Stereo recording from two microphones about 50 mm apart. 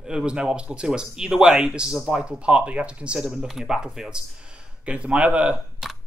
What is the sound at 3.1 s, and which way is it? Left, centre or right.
Speech, centre.